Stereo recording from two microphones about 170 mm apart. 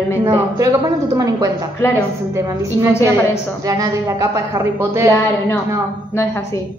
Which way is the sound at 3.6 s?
20° right (ahead or behind).